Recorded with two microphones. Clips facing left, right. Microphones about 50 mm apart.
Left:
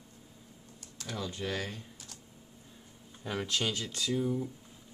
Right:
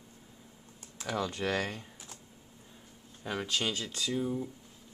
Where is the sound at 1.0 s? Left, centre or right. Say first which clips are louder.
Right 4 dB; right.